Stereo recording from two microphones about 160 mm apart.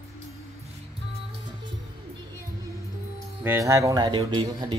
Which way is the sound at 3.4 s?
20° right (ahead or behind).